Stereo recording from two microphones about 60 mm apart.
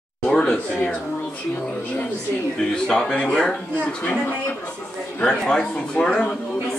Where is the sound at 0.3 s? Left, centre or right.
Centre.